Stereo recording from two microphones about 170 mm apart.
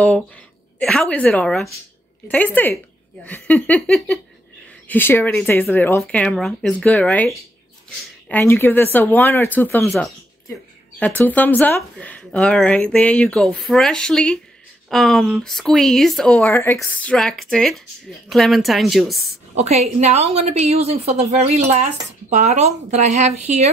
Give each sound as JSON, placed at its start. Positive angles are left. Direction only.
{"t": 0.7, "sound": "speech", "side_deg": 5}
{"t": 11.0, "sound": "speech", "side_deg": 10}
{"t": 19.5, "sound": "a woman's voice", "side_deg": -40}